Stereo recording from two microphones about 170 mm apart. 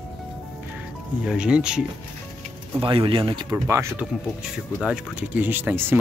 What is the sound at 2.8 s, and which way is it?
Speech, 30° right (ahead or behind).